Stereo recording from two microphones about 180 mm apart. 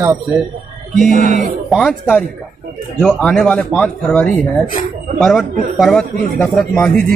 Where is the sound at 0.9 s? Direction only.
45° right (ahead or behind).